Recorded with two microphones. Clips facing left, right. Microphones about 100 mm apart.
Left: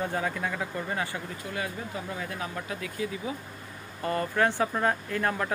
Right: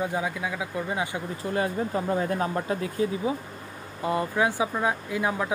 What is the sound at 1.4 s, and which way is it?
Speech, 35° right (ahead or behind).